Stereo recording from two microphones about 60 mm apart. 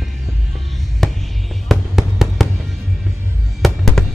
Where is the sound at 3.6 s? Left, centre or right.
Centre.